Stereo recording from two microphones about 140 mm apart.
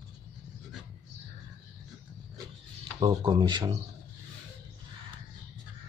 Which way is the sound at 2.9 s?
35° right (ahead or behind).